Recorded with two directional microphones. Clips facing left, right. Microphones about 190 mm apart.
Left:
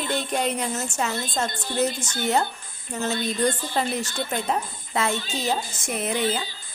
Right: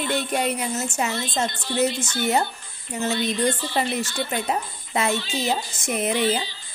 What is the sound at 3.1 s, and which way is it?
Speech, 45° left (ahead or behind).